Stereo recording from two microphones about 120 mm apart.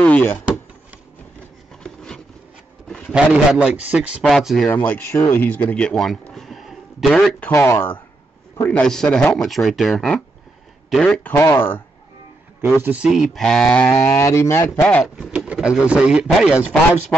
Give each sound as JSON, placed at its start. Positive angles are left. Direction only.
{"t": 0.0, "sound": "door", "side_deg": 10}
{"t": 1.8, "sound": "a sound", "side_deg": 5}
{"t": 3.1, "sound": "a man's voice", "side_deg": -10}
{"t": 4.2, "sound": "speech", "side_deg": 0}
{"t": 4.6, "sound": "speech", "side_deg": 15}
{"t": 7.5, "sound": "speech", "side_deg": 20}
{"t": 8.6, "sound": "speech", "side_deg": 10}
{"t": 11.5, "sound": "speech", "side_deg": 20}
{"t": 12.8, "sound": "a man's voice", "side_deg": -10}
{"t": 13.3, "sound": "speech", "side_deg": 5}
{"t": 14.0, "sound": "speech", "side_deg": 20}
{"t": 15.1, "sound": "a man's voice", "side_deg": -10}